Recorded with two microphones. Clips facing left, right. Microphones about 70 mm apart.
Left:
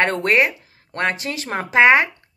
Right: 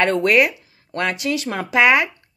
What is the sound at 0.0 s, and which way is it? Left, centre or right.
Speech, left.